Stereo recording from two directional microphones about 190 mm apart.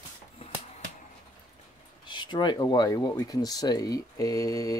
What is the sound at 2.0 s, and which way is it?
Speech, 25° left (ahead or behind).